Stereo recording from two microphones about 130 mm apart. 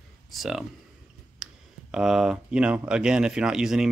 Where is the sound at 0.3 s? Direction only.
Centre (ahead or behind).